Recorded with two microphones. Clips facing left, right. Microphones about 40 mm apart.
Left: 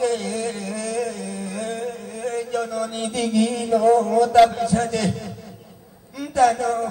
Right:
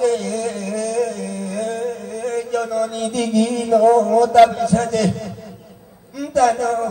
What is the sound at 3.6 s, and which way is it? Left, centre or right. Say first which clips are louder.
Speech: right 4 dB; right.